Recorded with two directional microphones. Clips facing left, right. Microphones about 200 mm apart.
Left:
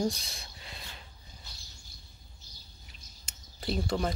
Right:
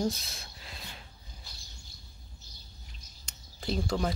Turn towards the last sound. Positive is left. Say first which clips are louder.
# even
turn(degrees=0)  # may be behind; listen again after turning